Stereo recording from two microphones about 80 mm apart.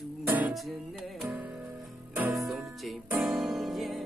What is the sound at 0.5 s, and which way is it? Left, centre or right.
Music, centre.